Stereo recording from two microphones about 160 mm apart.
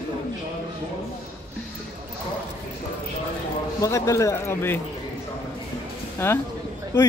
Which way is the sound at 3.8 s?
20° left (ahead or behind).